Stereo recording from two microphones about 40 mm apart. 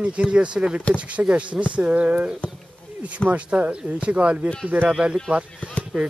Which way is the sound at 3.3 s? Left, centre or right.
Right.